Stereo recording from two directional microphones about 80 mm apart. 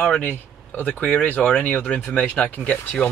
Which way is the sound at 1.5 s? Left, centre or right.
Centre.